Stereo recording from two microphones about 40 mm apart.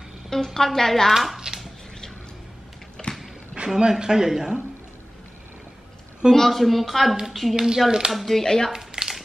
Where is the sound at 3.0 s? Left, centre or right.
Centre.